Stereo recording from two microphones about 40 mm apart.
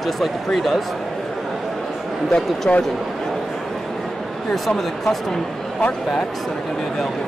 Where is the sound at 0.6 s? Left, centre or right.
Centre.